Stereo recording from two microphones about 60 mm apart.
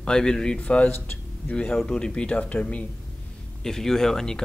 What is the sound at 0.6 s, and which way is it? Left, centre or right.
Speech, left.